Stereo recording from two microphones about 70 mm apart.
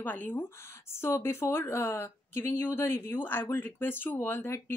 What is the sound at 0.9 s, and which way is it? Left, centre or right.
Speech, left.